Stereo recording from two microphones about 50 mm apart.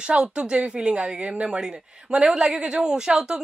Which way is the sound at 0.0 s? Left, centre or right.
Centre.